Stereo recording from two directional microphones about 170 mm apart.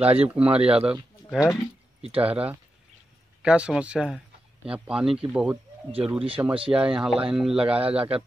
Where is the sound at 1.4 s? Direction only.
20° left (ahead or behind).